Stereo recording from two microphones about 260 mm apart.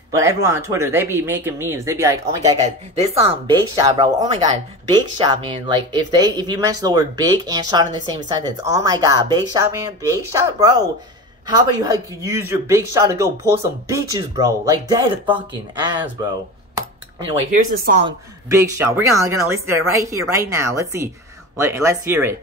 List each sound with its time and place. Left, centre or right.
0.1 s speech: centre
2.5 s speech: right
17.3 s speech: right
18.0 s speech: centre